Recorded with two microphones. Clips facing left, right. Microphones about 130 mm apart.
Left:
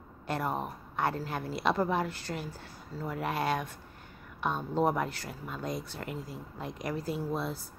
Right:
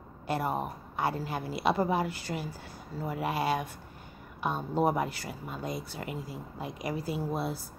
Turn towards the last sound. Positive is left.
turn(degrees=-10)  # may be behind; listen again after turning